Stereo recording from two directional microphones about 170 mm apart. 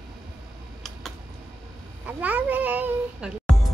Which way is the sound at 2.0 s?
10° right (ahead or behind).